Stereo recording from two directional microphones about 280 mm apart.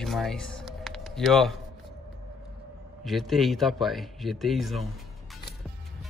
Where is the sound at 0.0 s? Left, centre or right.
Centre.